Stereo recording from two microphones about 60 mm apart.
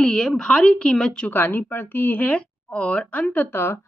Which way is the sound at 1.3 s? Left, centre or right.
Left.